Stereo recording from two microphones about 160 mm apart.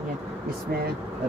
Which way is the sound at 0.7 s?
75° right (ahead or behind).